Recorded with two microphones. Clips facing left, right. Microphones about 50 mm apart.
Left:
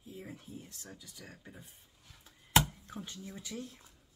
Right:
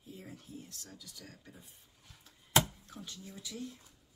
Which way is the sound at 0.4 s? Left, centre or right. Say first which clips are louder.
Even; left.